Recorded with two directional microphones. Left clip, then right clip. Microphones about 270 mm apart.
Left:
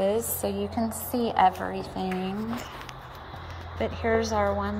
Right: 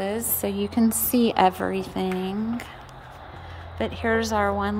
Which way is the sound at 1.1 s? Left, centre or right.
Right.